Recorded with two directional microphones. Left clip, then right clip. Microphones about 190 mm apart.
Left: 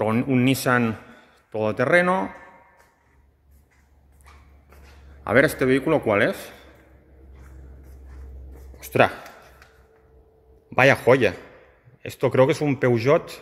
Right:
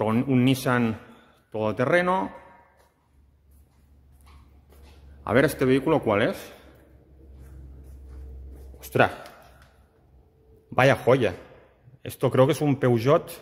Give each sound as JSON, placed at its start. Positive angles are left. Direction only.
{"t": 0.0, "sound": "a man's voice", "side_deg": 0}
{"t": 5.2, "sound": "a man's voice", "side_deg": 0}
{"t": 8.7, "sound": "speech", "side_deg": 0}
{"t": 10.7, "sound": "a man's voice", "side_deg": 0}
{"t": 12.0, "sound": "speech", "side_deg": -5}